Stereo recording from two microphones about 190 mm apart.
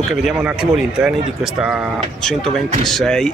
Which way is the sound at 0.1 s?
5° right (ahead or behind).